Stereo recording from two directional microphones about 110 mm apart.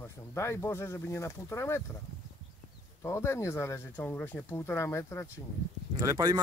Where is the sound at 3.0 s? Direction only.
25° left (ahead or behind).